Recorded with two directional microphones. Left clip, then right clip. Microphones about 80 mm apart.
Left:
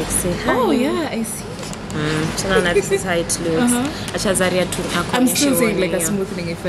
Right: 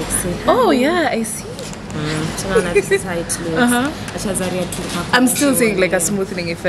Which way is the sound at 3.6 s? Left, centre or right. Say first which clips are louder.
Right 5 dB; right.